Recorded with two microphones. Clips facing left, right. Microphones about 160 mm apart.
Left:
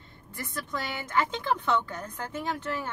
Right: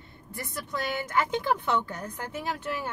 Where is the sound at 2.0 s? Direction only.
10° right (ahead or behind).